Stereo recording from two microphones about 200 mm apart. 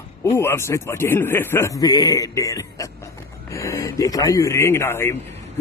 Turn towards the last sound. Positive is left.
turn(degrees=15)  # may be behind; listen again after turning